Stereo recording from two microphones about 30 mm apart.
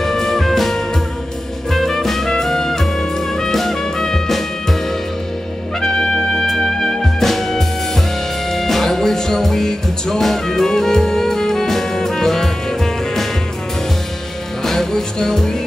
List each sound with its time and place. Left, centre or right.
0.0 s music: centre
5.8 s trumpet: left
6.5 s music: centre
10.2 s jazz: centre
14.6 s music: centre